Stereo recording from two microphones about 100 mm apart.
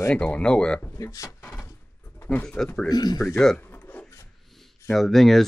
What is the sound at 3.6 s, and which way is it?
Rub, 20° left (ahead or behind).